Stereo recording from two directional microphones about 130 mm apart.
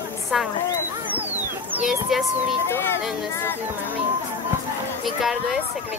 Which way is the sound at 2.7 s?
20° left (ahead or behind).